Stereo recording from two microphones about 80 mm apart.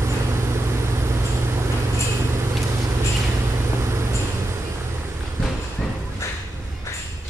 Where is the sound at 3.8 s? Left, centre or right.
Right.